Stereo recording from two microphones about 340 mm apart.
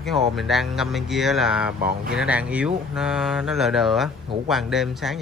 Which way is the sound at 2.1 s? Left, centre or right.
Centre.